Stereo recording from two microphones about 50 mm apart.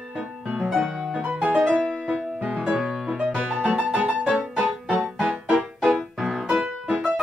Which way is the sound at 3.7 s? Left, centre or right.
Right.